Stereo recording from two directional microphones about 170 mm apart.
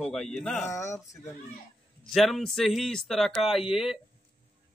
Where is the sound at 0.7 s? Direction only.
15° left (ahead or behind).